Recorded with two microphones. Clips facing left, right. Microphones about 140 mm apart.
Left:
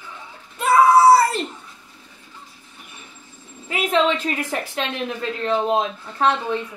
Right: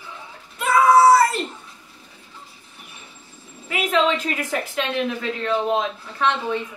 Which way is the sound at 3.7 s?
30° left (ahead or behind).